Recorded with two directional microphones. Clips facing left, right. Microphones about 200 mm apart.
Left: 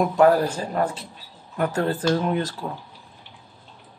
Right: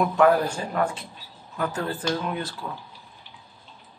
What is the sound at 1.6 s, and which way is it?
Speech, 50° left (ahead or behind).